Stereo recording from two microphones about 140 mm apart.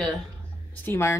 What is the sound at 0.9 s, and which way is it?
Speech, 20° left (ahead or behind).